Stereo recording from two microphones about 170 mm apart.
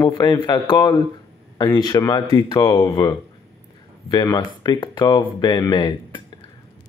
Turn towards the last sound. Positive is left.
turn(degrees=25)  # may be behind; listen again after turning